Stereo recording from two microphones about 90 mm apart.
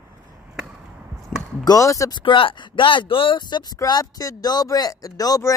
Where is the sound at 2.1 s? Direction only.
65° left (ahead or behind).